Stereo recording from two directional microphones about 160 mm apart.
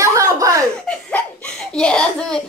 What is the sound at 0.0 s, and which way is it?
Chuckle, 20° right (ahead or behind).